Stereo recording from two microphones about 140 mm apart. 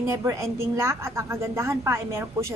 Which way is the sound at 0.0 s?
20° right (ahead or behind).